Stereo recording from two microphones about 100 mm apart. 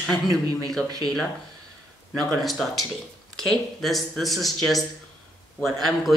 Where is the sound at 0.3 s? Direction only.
40° right (ahead or behind).